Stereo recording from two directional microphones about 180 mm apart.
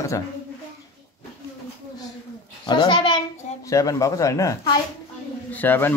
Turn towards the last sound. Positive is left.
turn(degrees=10)  # may be behind; listen again after turning